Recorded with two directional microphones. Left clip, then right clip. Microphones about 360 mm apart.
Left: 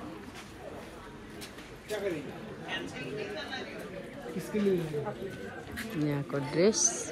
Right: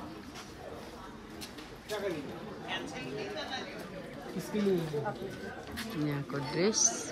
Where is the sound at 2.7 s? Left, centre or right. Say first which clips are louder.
Left 1 dB; right.